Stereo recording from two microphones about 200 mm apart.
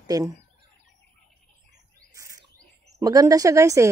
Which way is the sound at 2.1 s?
15° right (ahead or behind).